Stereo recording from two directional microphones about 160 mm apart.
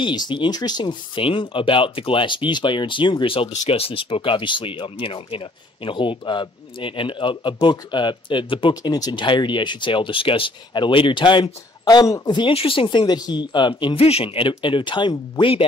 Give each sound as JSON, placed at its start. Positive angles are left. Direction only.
{"t": 0.0, "sound": "speech", "side_deg": 30}